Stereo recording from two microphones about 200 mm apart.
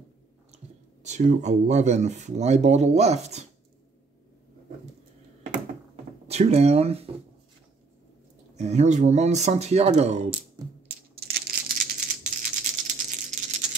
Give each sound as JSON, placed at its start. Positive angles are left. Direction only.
{"t": 1.0, "sound": "speech", "side_deg": -35}
{"t": 6.2, "sound": "speech", "side_deg": -30}
{"t": 8.5, "sound": "speech", "side_deg": -35}
{"t": 11.1, "sound": "rattle", "side_deg": -50}